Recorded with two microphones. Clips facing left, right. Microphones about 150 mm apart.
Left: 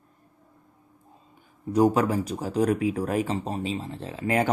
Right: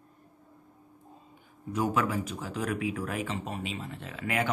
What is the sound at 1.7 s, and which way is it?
Speech, 35° left (ahead or behind).